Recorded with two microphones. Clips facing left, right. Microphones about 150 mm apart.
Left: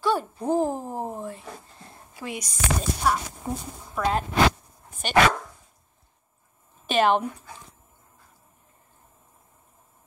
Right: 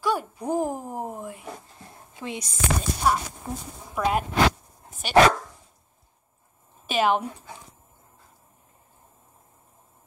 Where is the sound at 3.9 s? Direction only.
15° right (ahead or behind).